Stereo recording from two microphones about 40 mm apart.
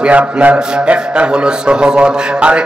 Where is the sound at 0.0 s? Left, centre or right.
Right.